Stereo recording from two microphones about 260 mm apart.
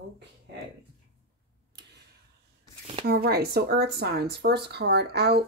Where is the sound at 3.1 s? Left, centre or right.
Right.